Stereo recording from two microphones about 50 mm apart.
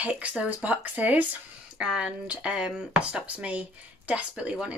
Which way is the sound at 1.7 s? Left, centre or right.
Centre.